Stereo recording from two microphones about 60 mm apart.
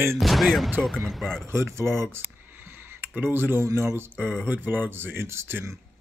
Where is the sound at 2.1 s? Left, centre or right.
Right.